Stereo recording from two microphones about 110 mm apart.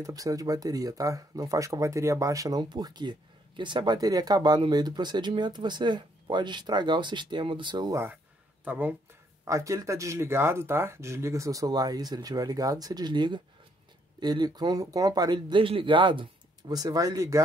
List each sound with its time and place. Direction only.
0.0 s speech: 30° right (ahead or behind)
2.7 s speech: 40° right (ahead or behind)
8.6 s speech: 15° right (ahead or behind)
9.4 s speech: 30° right (ahead or behind)